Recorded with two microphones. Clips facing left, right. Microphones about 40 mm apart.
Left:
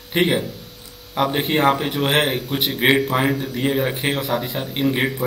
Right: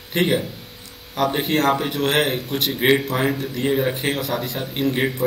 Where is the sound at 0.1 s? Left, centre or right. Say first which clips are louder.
Left 1 dB; centre.